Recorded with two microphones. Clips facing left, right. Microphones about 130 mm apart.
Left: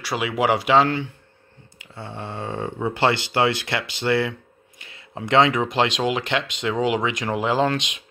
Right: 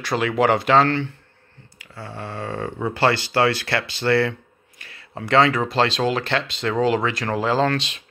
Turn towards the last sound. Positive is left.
turn(degrees=15)  # may be behind; listen again after turning